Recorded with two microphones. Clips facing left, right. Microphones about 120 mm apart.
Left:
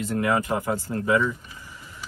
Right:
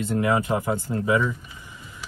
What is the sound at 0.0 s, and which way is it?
Speech, 25° right (ahead or behind).